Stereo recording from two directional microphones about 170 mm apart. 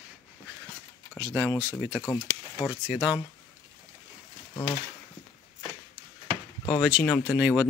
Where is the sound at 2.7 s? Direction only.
5° right (ahead or behind).